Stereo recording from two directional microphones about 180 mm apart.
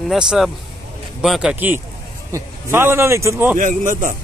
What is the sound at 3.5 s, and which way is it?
Speech, 45° right (ahead or behind).